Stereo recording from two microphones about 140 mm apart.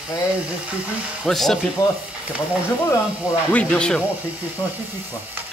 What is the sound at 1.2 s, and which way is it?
Speech, 5° left (ahead or behind).